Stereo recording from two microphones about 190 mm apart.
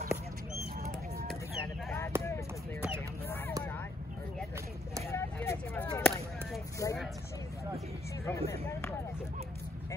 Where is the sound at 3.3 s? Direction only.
10° left (ahead or behind).